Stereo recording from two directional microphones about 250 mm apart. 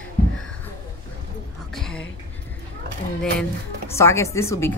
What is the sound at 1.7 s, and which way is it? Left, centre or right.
Whispering, centre.